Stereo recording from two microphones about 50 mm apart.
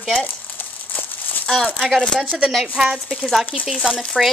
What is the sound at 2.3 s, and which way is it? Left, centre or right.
Speech, centre.